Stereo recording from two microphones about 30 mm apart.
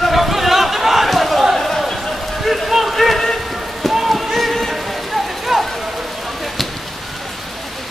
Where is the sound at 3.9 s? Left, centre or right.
Centre.